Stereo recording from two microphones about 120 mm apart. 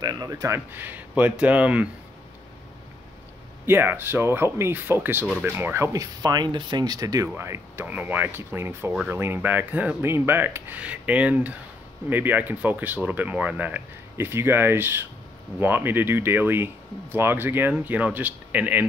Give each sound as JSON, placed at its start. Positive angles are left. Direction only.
{"t": 0.0, "sound": "speech", "side_deg": -35}
{"t": 0.7, "sound": "speech", "side_deg": -15}
{"t": 3.6, "sound": "speech", "side_deg": -20}
{"t": 6.2, "sound": "speech", "side_deg": -35}